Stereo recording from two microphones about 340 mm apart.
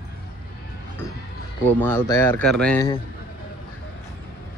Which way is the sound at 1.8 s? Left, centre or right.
Centre.